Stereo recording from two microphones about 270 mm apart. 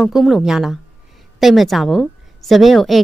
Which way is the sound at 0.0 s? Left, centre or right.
Centre.